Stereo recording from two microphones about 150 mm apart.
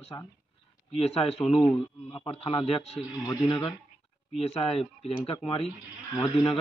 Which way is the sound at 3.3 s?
30° left (ahead or behind).